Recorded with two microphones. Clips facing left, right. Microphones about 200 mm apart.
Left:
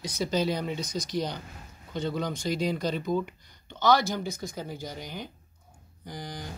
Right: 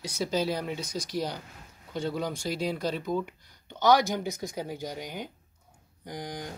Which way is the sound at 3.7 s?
15° right (ahead or behind).